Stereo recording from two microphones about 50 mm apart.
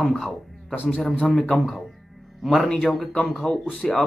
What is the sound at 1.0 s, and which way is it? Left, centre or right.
A man's voice, centre.